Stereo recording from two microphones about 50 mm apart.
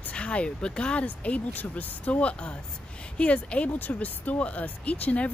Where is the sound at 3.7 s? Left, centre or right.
Left.